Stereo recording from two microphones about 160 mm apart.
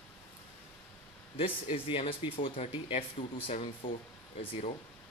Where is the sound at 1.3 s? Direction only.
35° left (ahead or behind).